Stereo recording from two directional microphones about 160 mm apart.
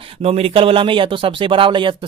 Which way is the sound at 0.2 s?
40° right (ahead or behind).